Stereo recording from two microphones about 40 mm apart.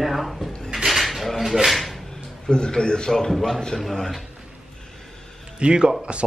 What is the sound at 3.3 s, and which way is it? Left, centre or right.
Speech, centre.